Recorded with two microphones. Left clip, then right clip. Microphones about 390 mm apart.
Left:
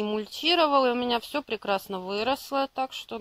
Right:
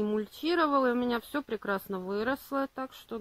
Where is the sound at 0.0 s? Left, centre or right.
Centre.